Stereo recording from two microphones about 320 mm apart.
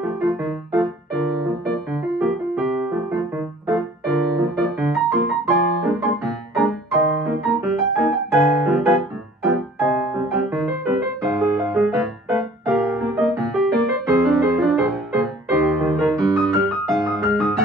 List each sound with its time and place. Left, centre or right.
0.0 s music: centre